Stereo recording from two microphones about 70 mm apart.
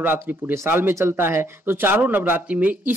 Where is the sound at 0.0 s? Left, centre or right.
Right.